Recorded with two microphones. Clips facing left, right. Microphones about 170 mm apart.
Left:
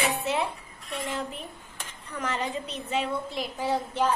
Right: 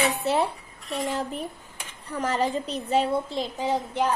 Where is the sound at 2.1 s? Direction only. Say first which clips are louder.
Right 5 dB; 35° right (ahead or behind).